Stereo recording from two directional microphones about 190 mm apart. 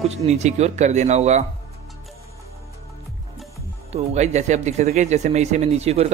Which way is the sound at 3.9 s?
35° right (ahead or behind).